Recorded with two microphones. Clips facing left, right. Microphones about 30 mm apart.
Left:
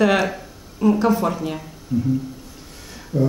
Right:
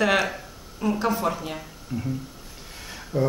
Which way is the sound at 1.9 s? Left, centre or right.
Right.